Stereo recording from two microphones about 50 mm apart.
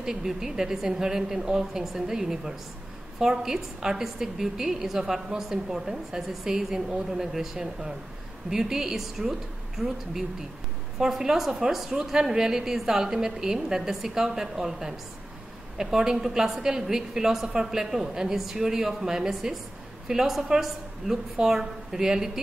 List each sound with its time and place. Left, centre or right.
0.0 s a woman's voice: centre